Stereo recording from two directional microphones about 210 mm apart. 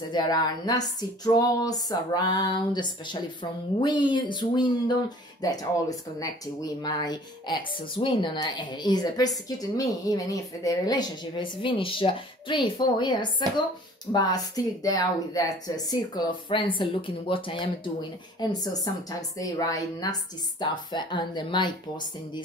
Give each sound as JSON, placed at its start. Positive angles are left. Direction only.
{"t": 0.1, "sound": "a woman's voice", "side_deg": 20}